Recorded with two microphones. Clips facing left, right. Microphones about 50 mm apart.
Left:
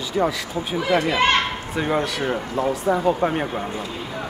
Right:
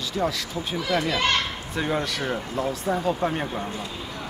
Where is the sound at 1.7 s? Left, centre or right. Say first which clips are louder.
Left 3 dB; centre.